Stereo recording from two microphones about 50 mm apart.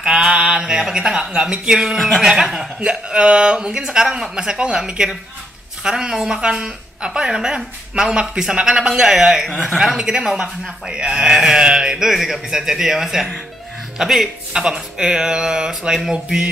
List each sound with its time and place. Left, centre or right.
0.0 s mantra: centre
0.7 s speech: centre
2.0 s a man's voice: centre